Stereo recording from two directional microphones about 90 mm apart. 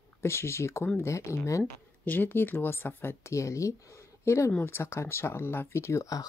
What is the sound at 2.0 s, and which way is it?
Speech, 20° left (ahead or behind).